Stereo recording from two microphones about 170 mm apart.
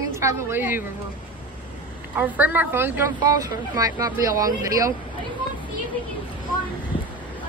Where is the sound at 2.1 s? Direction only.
10° right (ahead or behind).